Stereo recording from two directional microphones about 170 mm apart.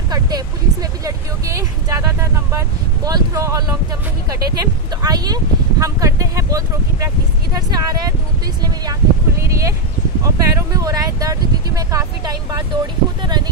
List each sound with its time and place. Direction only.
1.0 s speech: 20° right (ahead or behind)
9.4 s speech: 20° right (ahead or behind)